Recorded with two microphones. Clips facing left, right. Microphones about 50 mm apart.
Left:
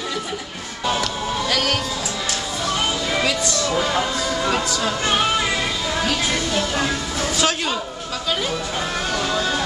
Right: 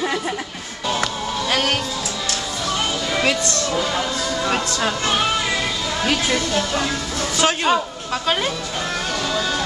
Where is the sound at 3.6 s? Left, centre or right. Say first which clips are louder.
Left 1 dB; centre.